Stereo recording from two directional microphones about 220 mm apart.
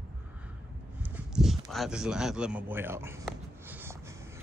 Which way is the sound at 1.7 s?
Centre (ahead or behind).